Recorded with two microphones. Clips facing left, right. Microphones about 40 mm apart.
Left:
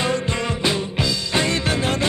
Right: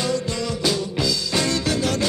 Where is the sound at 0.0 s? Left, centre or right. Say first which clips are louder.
Left 2 dB; left.